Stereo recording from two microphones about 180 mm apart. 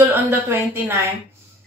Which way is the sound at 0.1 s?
10° right (ahead or behind).